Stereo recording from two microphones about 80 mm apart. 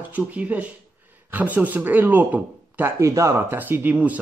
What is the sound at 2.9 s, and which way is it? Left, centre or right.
A man's voice, right.